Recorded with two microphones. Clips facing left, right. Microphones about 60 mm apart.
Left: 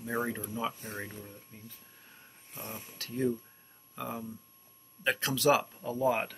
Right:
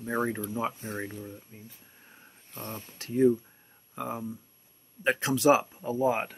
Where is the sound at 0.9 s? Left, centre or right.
Centre.